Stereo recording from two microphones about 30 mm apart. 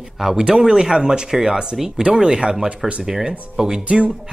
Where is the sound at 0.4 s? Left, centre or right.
Right.